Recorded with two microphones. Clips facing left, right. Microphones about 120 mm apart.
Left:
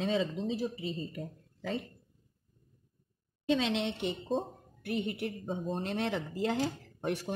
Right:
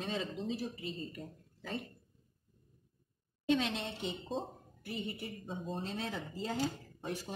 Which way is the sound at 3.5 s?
80° left.